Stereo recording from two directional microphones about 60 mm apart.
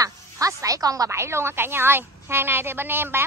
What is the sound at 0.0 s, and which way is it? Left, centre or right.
Music, right.